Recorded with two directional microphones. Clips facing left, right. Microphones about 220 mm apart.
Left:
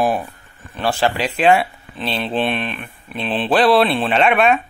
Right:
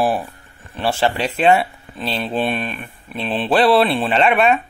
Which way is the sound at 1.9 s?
5° right (ahead or behind).